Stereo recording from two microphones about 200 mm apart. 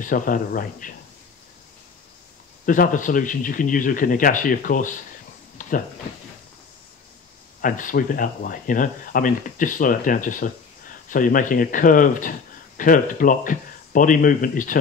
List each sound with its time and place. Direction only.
0.0 s speech: 45° left (ahead or behind)
2.6 s speech: 40° left (ahead or behind)
5.6 s a sound: 40° left (ahead or behind)
7.6 s speech: 40° left (ahead or behind)